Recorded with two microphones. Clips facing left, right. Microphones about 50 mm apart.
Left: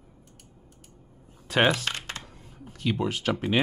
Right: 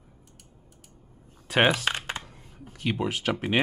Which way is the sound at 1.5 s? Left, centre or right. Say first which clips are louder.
Even; centre.